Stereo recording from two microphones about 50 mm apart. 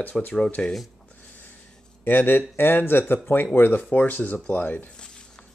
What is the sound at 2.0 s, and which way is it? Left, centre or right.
Speech, left.